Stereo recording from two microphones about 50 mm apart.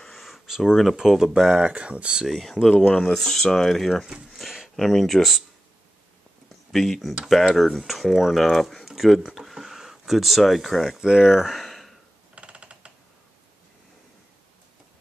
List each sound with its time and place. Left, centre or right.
0.0 s speech: centre
1.7 s speech: right
2.2 s speech: centre
4.0 s speech: centre
4.7 s speech: centre
6.5 s speech: centre
11.3 s speech: centre
12.4 s a sound: right